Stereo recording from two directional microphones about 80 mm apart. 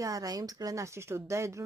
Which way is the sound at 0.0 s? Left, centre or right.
Right.